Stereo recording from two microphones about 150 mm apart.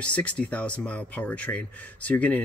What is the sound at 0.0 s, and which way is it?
Speech, 10° left (ahead or behind).